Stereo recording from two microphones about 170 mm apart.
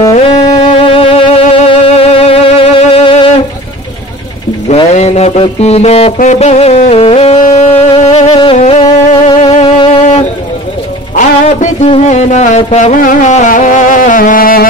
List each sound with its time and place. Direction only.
0.7 s music: 35° left (ahead or behind)
4.6 s music: 40° left (ahead or behind)
11.1 s a sound: 45° left (ahead or behind)